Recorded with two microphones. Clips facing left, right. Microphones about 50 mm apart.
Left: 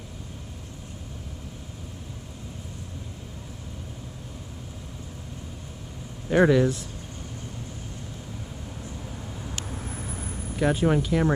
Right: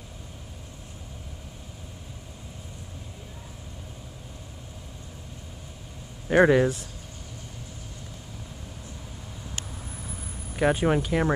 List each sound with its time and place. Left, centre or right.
6.2 s speech: centre
9.7 s vehicle: left
9.9 s vehicle: left
10.5 s speech: centre